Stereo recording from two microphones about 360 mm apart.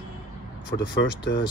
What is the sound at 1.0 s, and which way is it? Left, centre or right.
Speech, left.